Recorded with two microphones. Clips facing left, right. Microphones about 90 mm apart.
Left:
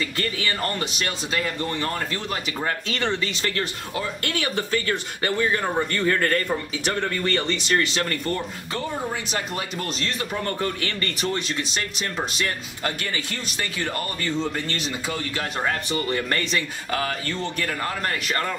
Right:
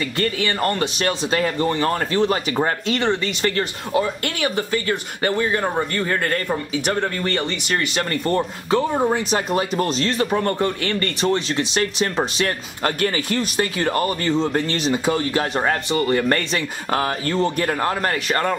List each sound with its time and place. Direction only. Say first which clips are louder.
0.2 s speech: right 7 dB; 30° right (ahead or behind)
2.9 s speech: right 5 dB; 20° right (ahead or behind)
8.0 s speech: right 5 dB; 35° right (ahead or behind)